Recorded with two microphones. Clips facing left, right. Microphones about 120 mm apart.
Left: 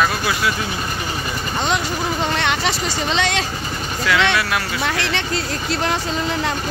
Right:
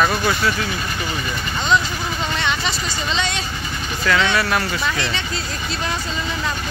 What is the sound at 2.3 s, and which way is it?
Speech, 70° left (ahead or behind).